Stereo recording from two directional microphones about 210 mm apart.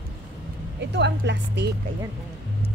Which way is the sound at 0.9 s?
55° right (ahead or behind).